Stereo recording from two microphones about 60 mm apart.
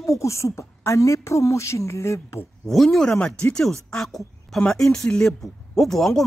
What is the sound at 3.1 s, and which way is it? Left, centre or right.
Speech, centre.